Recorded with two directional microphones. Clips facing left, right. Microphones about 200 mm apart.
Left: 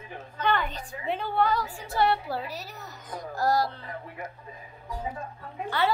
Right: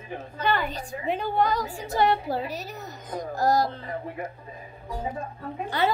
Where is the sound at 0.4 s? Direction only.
10° right (ahead or behind).